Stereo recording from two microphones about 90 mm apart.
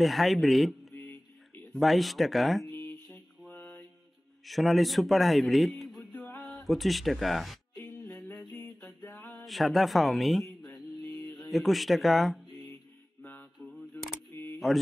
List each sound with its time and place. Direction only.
0.0 s a man's voice: centre (ahead or behind)
0.9 s a sound: 20° left (ahead or behind)
1.7 s a man's voice: centre (ahead or behind)
2.9 s mantra: 15° left (ahead or behind)
4.5 s a man's voice: centre (ahead or behind)
6.1 s music: 10° left (ahead or behind)
6.6 s speech: centre (ahead or behind)
8.5 s music: 10° left (ahead or behind)
9.2 s speech: 5° left (ahead or behind)
13.2 s mantra: 20° left (ahead or behind)
14.3 s a sound: 25° left (ahead or behind)